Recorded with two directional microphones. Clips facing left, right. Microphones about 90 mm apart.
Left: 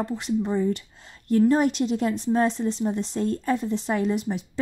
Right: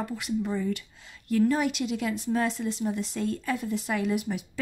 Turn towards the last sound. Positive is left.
turn(degrees=30)  # may be behind; listen again after turning